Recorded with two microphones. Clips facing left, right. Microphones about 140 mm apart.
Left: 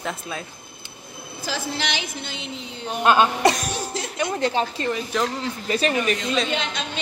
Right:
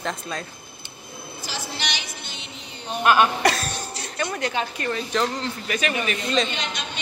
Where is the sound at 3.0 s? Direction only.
25° left (ahead or behind).